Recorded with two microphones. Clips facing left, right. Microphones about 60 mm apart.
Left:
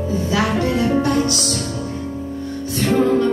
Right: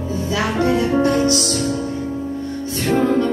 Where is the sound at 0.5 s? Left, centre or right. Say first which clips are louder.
Right 1 dB; right.